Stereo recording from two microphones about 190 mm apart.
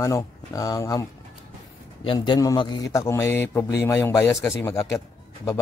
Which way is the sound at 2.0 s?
25° left (ahead or behind).